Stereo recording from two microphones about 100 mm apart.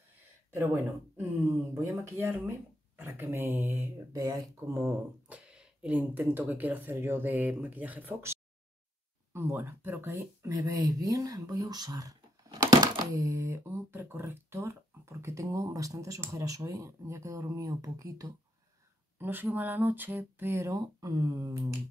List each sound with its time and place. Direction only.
1.7 s speech: 30° right (ahead or behind)
4.2 s speech: 35° right (ahead or behind)
5.3 s speech: 10° right (ahead or behind); by 10.5 s 25° right (ahead or behind)
10.5 s speech: 35° right (ahead or behind)
12.6 s a sound: 45° right (ahead or behind)
13.2 s speech: 25° right (ahead or behind)
19.1 s speech: 20° right (ahead or behind)